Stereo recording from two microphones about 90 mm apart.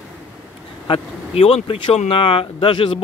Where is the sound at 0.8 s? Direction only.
90° left.